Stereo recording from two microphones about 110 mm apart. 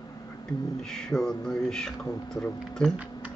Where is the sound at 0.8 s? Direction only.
5° left (ahead or behind).